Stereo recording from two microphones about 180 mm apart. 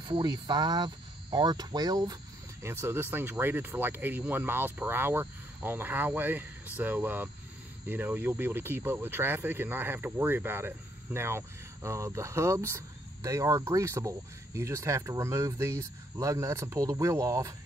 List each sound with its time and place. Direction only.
0.0 s speech: 25° right (ahead or behind)